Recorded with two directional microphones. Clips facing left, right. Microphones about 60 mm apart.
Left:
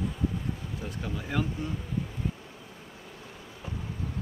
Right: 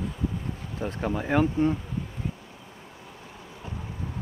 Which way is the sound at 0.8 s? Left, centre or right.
Right.